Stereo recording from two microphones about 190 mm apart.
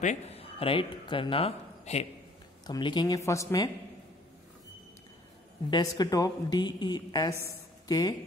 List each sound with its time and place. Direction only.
0.0 s a man's voice: 35° left (ahead or behind); by 3.7 s 15° left (ahead or behind)
5.7 s a woman's voice: 20° left (ahead or behind)